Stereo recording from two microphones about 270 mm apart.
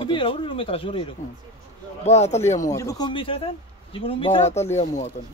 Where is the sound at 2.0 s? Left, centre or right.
Left.